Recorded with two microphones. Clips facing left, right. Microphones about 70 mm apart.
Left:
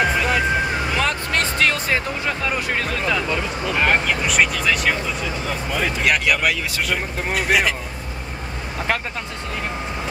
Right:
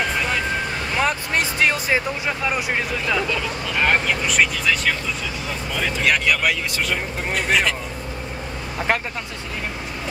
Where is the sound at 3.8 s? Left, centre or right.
Centre.